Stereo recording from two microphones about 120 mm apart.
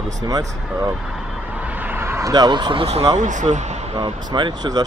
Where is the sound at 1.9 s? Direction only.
20° right (ahead or behind).